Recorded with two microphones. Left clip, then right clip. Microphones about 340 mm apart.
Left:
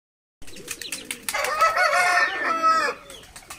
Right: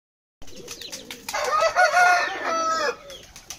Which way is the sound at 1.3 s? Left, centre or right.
Right.